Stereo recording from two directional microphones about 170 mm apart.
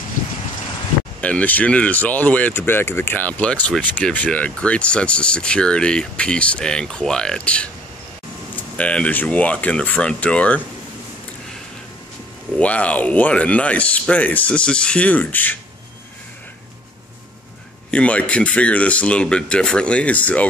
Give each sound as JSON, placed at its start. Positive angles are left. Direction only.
{"t": 1.2, "sound": "speech", "side_deg": 10}
{"t": 8.7, "sound": "speech", "side_deg": 5}
{"t": 12.5, "sound": "speech", "side_deg": 10}
{"t": 17.9, "sound": "speech", "side_deg": 5}